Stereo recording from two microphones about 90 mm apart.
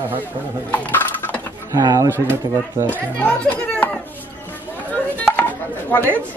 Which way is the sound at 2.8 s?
20° left (ahead or behind).